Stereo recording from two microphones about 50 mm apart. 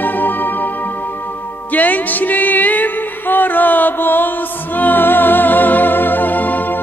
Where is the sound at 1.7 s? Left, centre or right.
Left.